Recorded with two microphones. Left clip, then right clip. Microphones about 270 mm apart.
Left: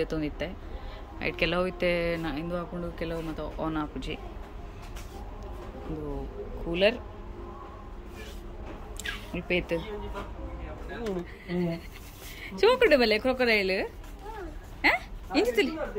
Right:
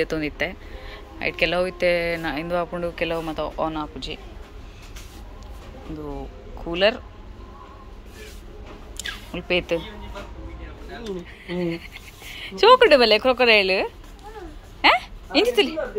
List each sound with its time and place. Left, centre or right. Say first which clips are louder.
0.0 s a woman's voice: right 7 dB; centre
6.7 s a woman's voice: right 5 dB; centre
8.9 s a sound: right 4 dB; centre
11.4 s a woman's voice: right 7 dB; centre